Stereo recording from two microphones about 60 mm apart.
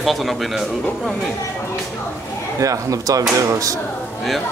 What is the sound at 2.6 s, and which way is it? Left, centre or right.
Speech, right.